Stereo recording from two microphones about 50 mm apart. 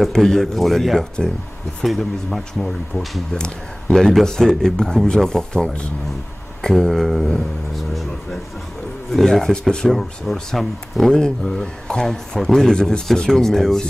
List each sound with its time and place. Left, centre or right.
0.1 s speech: centre
3.3 s speech: centre
9.1 s speech: centre
9.5 s speech: centre
9.8 s speech: centre
12.4 s speech: centre